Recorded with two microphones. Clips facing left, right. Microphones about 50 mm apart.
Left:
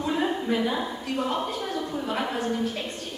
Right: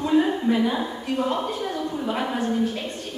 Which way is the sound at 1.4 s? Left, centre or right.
Centre.